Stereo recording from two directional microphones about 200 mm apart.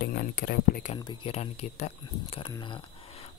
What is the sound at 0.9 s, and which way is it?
Speech, 25° left (ahead or behind).